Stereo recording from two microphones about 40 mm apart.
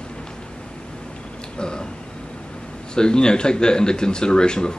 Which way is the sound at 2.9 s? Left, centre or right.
Centre.